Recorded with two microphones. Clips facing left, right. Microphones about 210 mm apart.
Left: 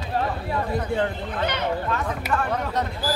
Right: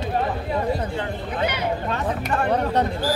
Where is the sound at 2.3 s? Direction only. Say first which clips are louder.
Right 4 dB; 35° right (ahead or behind).